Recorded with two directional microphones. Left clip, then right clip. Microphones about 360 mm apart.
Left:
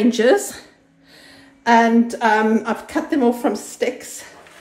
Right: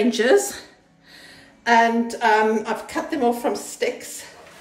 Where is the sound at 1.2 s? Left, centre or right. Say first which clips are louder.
Left 4 dB; centre.